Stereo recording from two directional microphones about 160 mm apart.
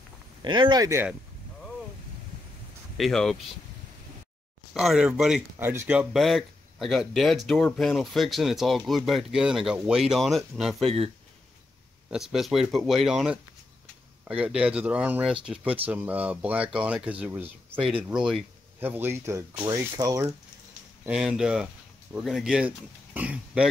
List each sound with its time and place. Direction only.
0.4 s speech: 30° right (ahead or behind)
3.0 s speech: centre (ahead or behind)
4.7 s speech: 5° right (ahead or behind)
12.1 s speech: 5° right (ahead or behind); by 20.2 s 20° right (ahead or behind)
21.0 s speech: 5° right (ahead or behind)